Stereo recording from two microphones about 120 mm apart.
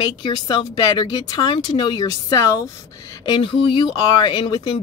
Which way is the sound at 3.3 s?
45° left (ahead or behind).